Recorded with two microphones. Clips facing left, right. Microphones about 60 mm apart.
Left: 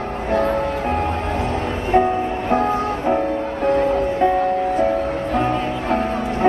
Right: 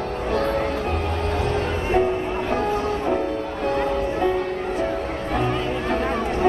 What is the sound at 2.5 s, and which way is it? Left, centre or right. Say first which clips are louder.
Music: left 4 dB; left.